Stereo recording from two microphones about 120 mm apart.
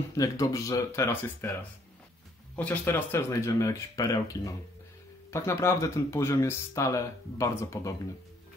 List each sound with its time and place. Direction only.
0.1 s speech: 30° left (ahead or behind)